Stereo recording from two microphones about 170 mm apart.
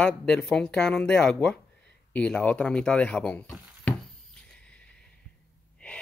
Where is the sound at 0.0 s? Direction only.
5° left (ahead or behind).